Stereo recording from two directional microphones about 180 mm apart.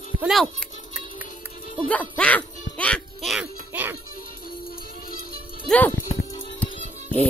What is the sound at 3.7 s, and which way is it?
Speech, 10° right (ahead or behind).